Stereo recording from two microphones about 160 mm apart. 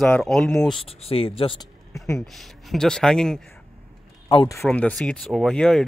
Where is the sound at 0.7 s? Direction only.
35° left (ahead or behind).